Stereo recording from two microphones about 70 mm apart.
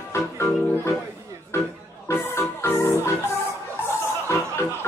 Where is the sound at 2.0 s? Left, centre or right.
Left.